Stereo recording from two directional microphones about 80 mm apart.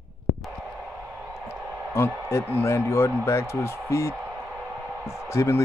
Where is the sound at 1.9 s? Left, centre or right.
Left.